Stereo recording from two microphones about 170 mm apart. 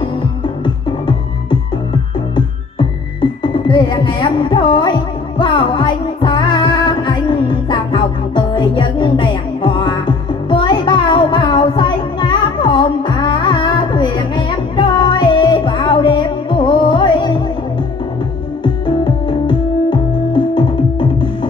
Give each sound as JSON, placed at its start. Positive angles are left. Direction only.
{"t": 2.3, "sound": "music", "side_deg": 25}
{"t": 18.6, "sound": "music", "side_deg": 25}